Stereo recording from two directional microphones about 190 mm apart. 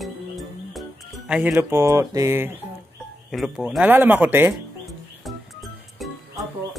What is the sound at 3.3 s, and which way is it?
Speech, 5° right (ahead or behind).